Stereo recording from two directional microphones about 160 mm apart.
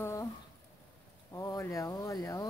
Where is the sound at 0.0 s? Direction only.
20° left (ahead or behind).